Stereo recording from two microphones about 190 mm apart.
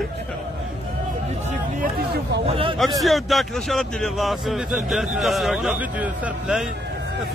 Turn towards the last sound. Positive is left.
turn(degrees=-5)  # may be behind; listen again after turning